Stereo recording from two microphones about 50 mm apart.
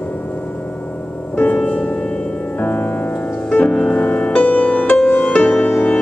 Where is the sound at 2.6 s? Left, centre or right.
Left.